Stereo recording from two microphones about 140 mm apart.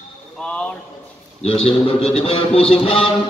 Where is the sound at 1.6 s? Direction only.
40° left (ahead or behind).